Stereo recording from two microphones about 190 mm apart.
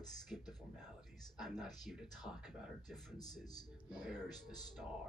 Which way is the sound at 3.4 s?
20° left (ahead or behind).